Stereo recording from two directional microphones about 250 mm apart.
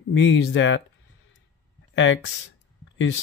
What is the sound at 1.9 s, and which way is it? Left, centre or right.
Speech, left.